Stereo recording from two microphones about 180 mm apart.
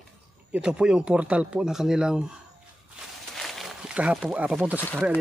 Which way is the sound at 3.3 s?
Centre (ahead or behind).